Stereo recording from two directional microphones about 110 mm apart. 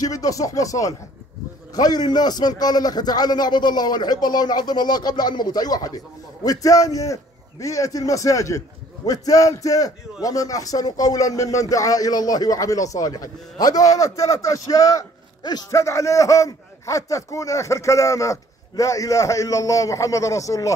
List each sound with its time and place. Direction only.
0.0 s a man's voice: 30° left (ahead or behind)